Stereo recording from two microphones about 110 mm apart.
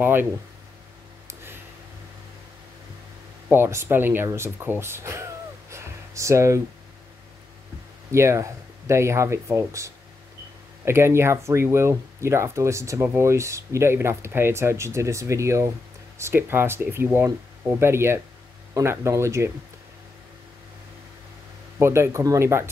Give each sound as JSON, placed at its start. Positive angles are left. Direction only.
{"t": 0.0, "sound": "speech", "side_deg": -20}
{"t": 1.2, "sound": "a sound", "side_deg": -20}
{"t": 3.4, "sound": "speech", "side_deg": -20}
{"t": 8.1, "sound": "speech", "side_deg": -25}
{"t": 21.7, "sound": "speech", "side_deg": -25}